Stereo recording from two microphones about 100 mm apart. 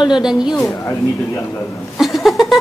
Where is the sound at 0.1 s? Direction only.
5° right (ahead or behind).